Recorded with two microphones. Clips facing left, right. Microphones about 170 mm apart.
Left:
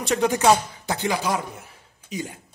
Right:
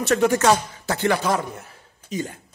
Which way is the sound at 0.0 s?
15° left (ahead or behind).